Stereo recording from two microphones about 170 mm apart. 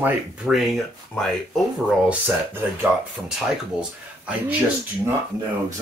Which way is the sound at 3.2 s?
15° right (ahead or behind).